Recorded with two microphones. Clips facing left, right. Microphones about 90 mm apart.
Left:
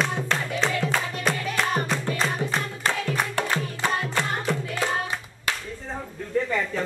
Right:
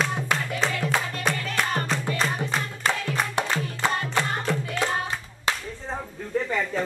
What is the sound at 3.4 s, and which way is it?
Music, 20° right (ahead or behind).